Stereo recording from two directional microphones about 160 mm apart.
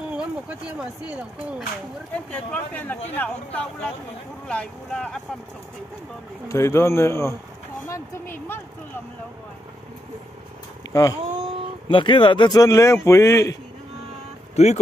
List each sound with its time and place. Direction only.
0.1 s speech: 5° right (ahead or behind)
2.1 s speech: 10° left (ahead or behind)
6.5 s speech: 15° left (ahead or behind)
10.9 s speech: 20° left (ahead or behind)
11.9 s a man's voice: 30° left (ahead or behind)
14.5 s speech: 45° left (ahead or behind)